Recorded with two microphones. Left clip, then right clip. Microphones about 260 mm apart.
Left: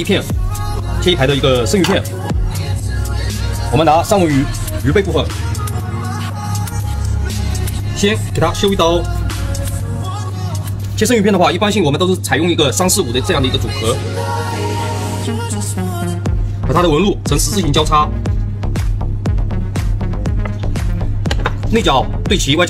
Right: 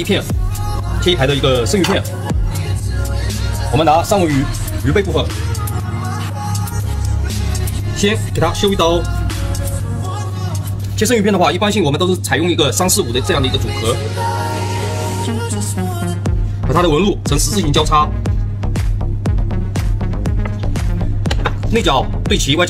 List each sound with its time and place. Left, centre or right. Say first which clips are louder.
1.0 s speech: left 1 dB; left
3.7 s speech: left 1 dB; left
8.0 s speech: left 1 dB; left
11.0 s speech: left 1 dB; left
15.2 s music: even; centre
16.8 s speech: left 1 dB; left
18.8 s music: even; centre
21.7 s speech: left 1 dB; left